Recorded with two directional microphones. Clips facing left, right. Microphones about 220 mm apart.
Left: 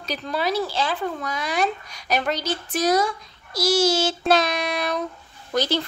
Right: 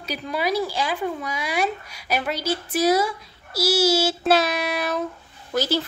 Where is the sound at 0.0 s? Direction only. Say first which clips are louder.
Even; 10° right (ahead or behind).